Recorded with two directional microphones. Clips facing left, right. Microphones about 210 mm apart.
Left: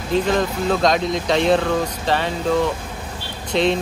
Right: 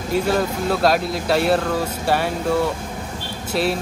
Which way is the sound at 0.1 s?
10° right (ahead or behind).